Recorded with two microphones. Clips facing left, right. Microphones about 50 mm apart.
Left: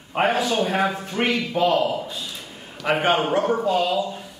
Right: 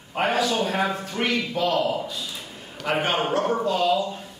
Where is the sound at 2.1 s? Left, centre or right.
Centre.